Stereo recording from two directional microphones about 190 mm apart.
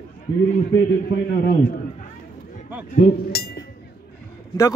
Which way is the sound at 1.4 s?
55° left (ahead or behind).